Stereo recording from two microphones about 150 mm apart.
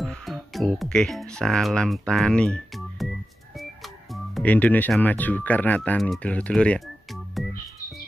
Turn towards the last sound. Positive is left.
turn(degrees=0)  # may be behind; listen again after turning